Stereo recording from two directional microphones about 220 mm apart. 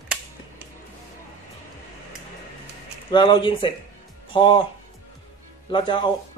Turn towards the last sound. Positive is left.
turn(degrees=20)  # may be behind; listen again after turning